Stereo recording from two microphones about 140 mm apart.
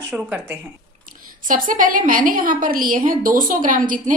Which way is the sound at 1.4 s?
75° right (ahead or behind).